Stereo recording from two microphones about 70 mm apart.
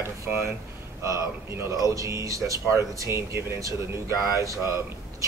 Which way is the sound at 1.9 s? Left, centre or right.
Right.